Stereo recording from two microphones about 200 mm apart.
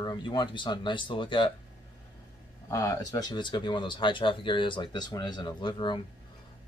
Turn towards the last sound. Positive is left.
turn(degrees=25)  # may be behind; listen again after turning